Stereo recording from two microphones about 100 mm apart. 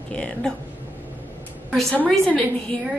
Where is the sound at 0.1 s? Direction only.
10° left (ahead or behind).